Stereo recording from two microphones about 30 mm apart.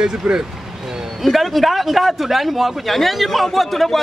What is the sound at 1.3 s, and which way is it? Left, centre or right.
Speech, centre.